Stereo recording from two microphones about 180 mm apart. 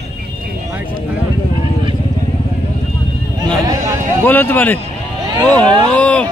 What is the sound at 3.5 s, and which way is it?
Speech, 20° right (ahead or behind).